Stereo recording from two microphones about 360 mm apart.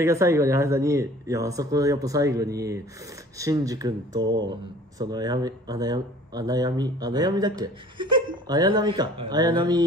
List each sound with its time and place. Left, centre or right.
0.0 s speech: centre